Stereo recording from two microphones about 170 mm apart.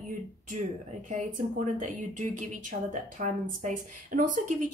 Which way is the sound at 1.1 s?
50° right (ahead or behind).